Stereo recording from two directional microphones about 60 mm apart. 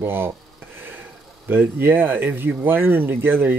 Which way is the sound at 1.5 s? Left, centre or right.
Right.